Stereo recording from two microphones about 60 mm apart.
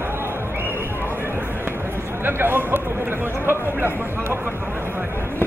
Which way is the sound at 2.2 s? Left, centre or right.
Right.